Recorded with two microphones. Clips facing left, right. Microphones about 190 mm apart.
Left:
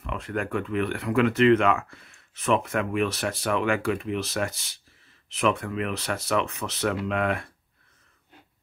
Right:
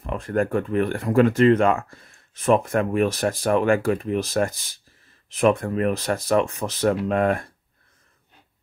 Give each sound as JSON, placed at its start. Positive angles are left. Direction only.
{"t": 0.0, "sound": "speech", "side_deg": -40}